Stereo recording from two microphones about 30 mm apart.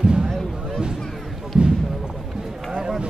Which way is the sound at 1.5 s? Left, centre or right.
Right.